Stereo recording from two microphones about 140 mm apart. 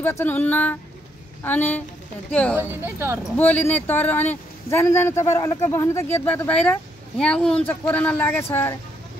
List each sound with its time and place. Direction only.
0.0 s speech: 15° left (ahead or behind)
2.5 s speech: 15° right (ahead or behind)
3.3 s speech: 10° left (ahead or behind)